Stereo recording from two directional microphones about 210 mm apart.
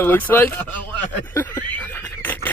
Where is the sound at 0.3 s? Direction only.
10° left (ahead or behind).